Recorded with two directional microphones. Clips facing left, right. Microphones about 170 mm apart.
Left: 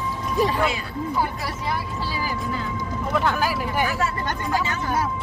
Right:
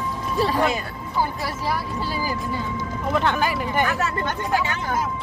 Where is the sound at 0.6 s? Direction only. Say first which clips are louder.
Right 2 dB; 40° right (ahead or behind).